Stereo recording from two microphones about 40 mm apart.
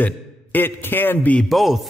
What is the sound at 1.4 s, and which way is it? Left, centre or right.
Speech, centre.